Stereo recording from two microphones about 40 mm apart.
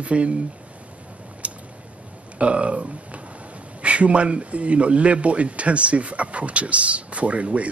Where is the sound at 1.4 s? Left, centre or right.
Right.